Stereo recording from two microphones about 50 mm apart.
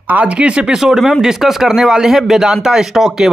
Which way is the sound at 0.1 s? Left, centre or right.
Right.